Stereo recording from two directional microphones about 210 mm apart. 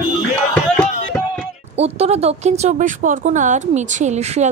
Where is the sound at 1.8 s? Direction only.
30° right (ahead or behind).